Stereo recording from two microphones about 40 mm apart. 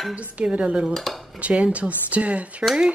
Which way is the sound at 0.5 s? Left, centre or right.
Right.